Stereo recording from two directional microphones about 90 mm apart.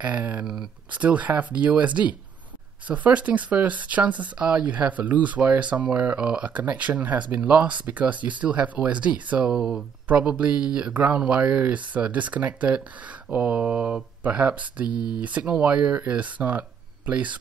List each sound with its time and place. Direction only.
0.0 s speech: 15° right (ahead or behind)